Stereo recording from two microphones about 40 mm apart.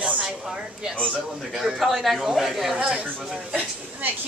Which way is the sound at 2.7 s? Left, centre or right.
Right.